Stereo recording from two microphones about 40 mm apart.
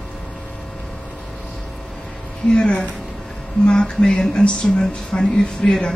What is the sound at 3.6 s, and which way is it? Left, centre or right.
Speech, centre.